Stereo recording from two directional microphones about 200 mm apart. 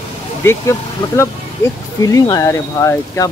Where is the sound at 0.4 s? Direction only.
15° left (ahead or behind).